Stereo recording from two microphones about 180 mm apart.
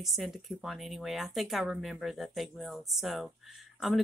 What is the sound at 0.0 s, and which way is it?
Speech, centre (ahead or behind).